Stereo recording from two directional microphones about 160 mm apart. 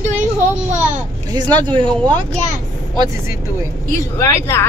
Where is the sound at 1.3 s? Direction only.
25° right (ahead or behind).